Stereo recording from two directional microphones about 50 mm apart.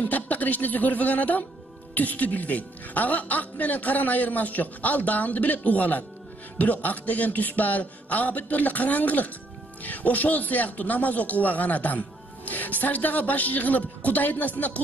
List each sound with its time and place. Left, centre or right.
0.0 s a man's voice: left